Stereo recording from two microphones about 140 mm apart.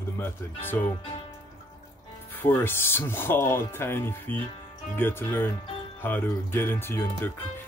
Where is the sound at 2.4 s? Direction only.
15° left (ahead or behind).